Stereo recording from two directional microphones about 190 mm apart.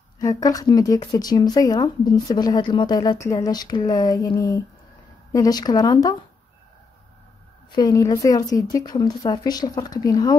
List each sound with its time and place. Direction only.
0.2 s speech: 20° left (ahead or behind)
7.7 s speech: 20° left (ahead or behind)